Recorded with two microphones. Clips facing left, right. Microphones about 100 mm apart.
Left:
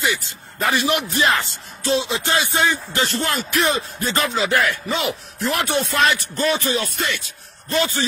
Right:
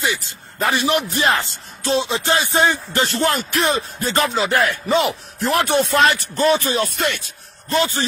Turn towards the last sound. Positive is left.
turn(degrees=-30)  # may be behind; listen again after turning